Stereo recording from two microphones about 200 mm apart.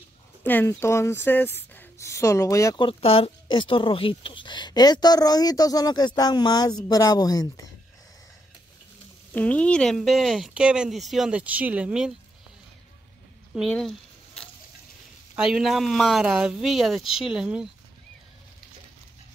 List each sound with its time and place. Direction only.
0.4 s speech: 10° left (ahead or behind)
9.3 s speech: 5° left (ahead or behind)
13.6 s a sound: centre (ahead or behind)
15.3 s speech: 5° right (ahead or behind)